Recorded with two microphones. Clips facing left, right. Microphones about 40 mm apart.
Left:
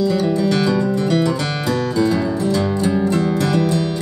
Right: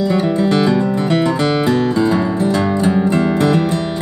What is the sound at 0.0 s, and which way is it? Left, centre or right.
Music, right.